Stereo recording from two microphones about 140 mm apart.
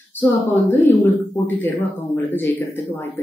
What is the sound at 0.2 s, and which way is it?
Speech, 15° left (ahead or behind).